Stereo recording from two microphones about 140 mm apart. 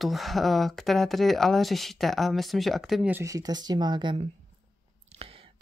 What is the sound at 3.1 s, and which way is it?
Speech, 25° right (ahead or behind).